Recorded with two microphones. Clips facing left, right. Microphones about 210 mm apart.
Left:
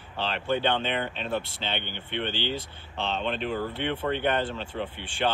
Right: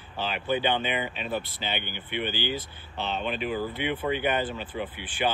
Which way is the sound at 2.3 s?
25° left (ahead or behind).